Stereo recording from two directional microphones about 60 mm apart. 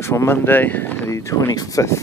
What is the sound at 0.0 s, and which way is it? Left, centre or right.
Speech, left.